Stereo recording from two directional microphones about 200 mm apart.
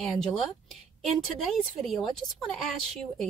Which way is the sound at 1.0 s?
Centre (ahead or behind).